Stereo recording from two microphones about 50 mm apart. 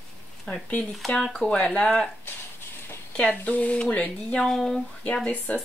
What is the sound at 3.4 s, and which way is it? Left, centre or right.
Speech, left.